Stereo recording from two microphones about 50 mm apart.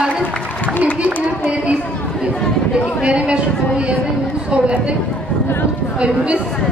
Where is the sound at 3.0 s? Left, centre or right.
Right.